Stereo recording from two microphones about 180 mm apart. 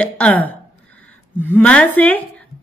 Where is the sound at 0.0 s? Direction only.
10° left (ahead or behind).